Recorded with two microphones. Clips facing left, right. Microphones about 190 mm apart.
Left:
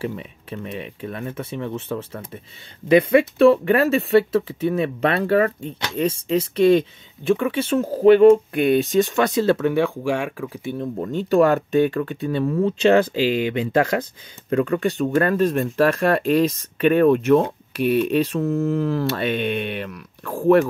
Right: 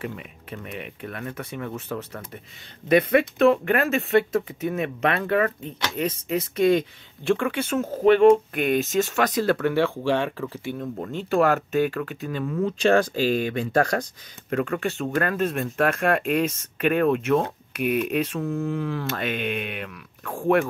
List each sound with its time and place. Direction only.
0.0 s speech: 30° left (ahead or behind); by 10.7 s 10° left (ahead or behind)
10.8 s speech: 35° left (ahead or behind)
14.5 s speech: 35° left (ahead or behind)